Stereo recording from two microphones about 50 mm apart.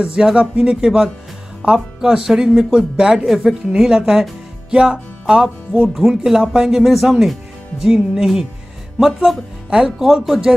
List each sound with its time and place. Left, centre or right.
0.0 s speech: centre
5.2 s music: centre
5.9 s speech: centre
9.3 s speech: centre
9.7 s speech: centre
10.0 s speech: centre